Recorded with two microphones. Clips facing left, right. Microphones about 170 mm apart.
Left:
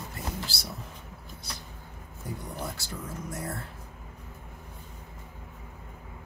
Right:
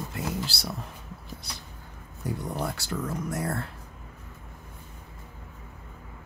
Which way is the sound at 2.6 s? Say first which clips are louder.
Right 6 dB; 70° right (ahead or behind).